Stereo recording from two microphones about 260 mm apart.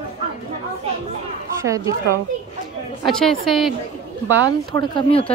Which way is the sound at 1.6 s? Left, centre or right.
Centre.